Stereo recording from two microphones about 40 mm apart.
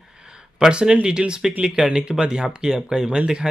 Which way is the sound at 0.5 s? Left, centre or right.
Centre.